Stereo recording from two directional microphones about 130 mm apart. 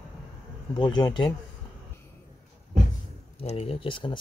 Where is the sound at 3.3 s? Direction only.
50° left (ahead or behind).